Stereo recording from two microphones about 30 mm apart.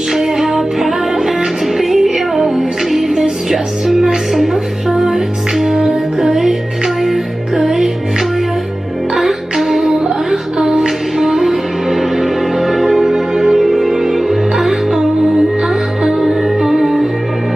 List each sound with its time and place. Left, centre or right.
0.1 s music: centre
7.6 s music: centre
9.1 s music: centre
10.6 s music: right
11.1 s music: centre
16.2 s music: centre